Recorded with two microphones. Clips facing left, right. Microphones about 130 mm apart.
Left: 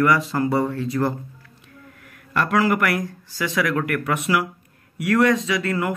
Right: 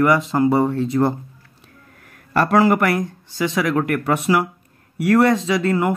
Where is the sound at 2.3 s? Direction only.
35° right (ahead or behind).